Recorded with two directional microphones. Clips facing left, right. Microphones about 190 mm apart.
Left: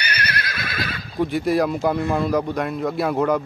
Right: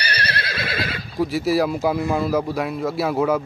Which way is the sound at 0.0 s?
35° right (ahead or behind).